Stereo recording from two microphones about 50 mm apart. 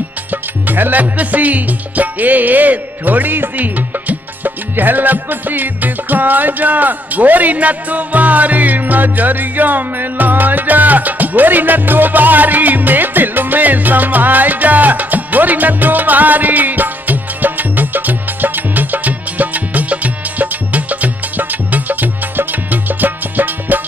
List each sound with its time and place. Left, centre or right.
0.3 s music: right